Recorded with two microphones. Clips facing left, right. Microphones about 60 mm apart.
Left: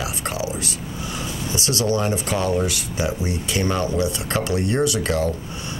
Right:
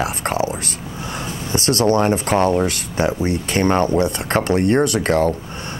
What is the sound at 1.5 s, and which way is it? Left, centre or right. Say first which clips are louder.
Speech: right 6 dB; right.